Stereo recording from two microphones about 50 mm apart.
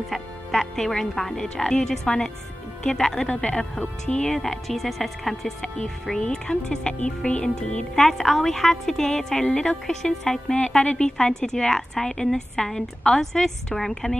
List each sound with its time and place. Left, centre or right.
0.1 s a woman's voice: centre
6.0 s a woman's voice: centre